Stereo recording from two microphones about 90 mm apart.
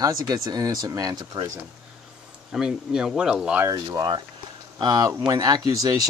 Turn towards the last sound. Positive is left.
turn(degrees=-45)  # may be behind; listen again after turning